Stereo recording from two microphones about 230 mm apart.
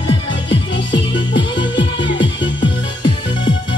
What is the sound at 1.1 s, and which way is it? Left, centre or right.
Music, left.